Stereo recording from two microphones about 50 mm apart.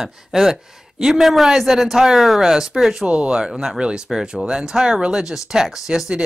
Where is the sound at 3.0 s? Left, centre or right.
Right.